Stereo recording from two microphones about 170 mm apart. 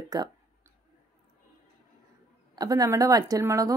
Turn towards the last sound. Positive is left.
turn(degrees=-20)  # may be behind; listen again after turning